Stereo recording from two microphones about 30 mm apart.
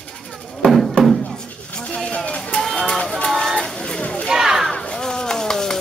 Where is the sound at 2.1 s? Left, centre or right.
Left.